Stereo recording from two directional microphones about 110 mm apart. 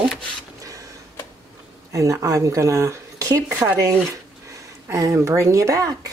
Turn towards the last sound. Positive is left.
turn(degrees=-30)  # may be behind; listen again after turning